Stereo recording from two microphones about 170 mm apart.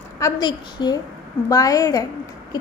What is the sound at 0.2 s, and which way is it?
A woman's voice, 25° left (ahead or behind).